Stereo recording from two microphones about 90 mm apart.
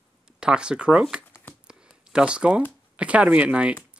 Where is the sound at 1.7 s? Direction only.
10° right (ahead or behind).